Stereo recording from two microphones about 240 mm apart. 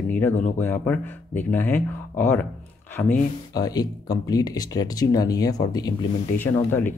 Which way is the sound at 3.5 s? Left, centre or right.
Centre.